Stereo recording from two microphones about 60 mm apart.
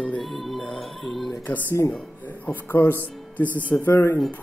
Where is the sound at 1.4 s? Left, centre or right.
Left.